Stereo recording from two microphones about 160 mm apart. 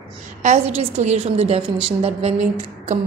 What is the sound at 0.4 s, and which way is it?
A woman's voice, 45° right (ahead or behind).